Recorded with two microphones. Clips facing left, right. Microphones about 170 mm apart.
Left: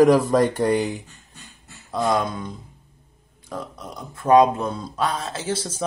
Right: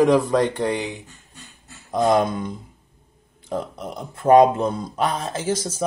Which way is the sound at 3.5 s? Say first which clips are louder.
Right 5 dB; 25° right (ahead or behind).